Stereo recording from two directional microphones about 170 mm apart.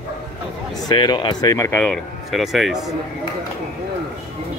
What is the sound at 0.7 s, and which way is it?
Speech, 25° left (ahead or behind).